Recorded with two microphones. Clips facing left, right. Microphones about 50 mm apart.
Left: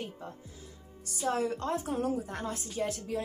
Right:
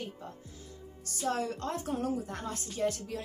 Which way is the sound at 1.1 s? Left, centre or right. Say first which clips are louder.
Left 2 dB; centre.